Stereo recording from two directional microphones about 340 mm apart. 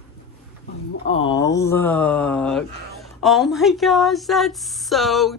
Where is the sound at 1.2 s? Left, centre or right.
Centre.